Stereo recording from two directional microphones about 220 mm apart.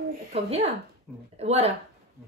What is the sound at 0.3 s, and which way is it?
A man's voice, 25° right (ahead or behind).